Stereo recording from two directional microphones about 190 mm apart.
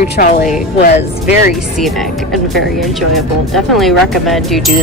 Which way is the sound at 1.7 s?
Centre (ahead or behind).